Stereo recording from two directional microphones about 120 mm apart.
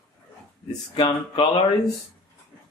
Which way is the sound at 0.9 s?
50° left (ahead or behind).